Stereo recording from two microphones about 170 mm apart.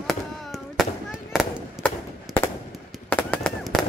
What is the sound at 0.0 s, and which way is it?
Firecracker, centre (ahead or behind).